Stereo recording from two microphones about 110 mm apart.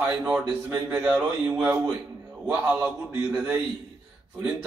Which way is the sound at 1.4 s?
20° right (ahead or behind).